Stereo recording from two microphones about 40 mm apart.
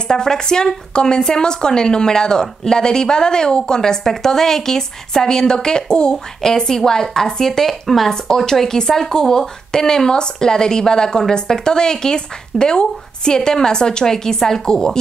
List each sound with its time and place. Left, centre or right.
0.1 s speech: centre
8.1 s speech: centre